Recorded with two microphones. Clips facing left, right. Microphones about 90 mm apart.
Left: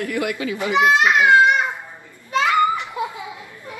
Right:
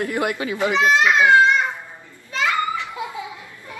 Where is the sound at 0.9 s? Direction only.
20° left (ahead or behind).